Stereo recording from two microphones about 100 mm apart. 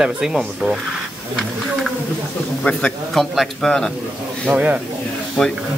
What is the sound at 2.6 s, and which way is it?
A man's voice, 5° left (ahead or behind).